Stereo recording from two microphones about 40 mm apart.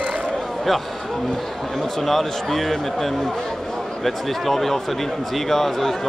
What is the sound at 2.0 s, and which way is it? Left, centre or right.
A man's voice, centre.